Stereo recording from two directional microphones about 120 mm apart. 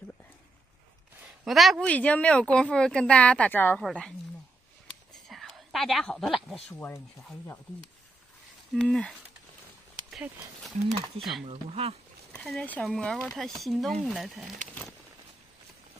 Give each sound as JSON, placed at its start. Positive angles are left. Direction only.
{"t": 1.4, "sound": "speech", "side_deg": 0}
{"t": 1.9, "sound": "speech", "side_deg": 10}
{"t": 3.8, "sound": "speech", "side_deg": 5}
{"t": 5.1, "sound": "a sound", "side_deg": 0}
{"t": 8.7, "sound": "speech", "side_deg": 5}
{"t": 11.4, "sound": "speech", "side_deg": -60}
{"t": 12.4, "sound": "speech", "side_deg": 10}